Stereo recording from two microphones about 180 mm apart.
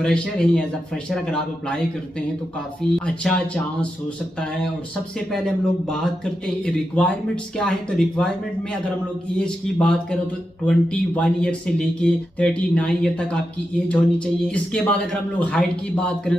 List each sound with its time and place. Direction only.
0.0 s speech: 5° left (ahead or behind)
2.8 s speech: 5° left (ahead or behind)
5.3 s speech: 5° left (ahead or behind)
9.4 s speech: 5° left (ahead or behind)